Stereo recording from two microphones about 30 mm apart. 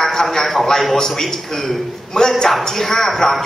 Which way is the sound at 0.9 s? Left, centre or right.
Centre.